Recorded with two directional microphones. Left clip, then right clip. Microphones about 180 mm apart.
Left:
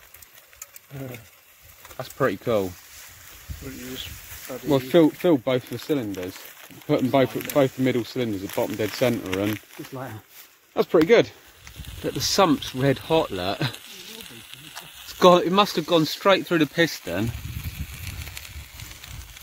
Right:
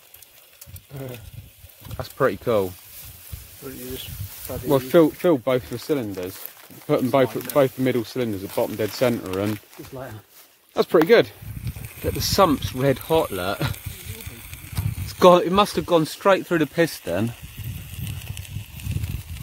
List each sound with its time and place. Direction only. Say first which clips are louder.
2.0 s speech: right 2 dB; 5° right (ahead or behind)
3.6 s speech: right 1 dB; 35° right (ahead or behind)
4.6 s speech: right 2 dB; 10° right (ahead or behind)
10.7 s speech: right 2 dB; 5° right (ahead or behind)
15.0 s speech: right 2 dB; 5° right (ahead or behind)